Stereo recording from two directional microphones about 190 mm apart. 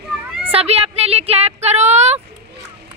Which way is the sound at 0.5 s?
30° right (ahead or behind).